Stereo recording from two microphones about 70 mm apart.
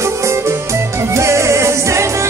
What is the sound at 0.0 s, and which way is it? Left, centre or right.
Music, right.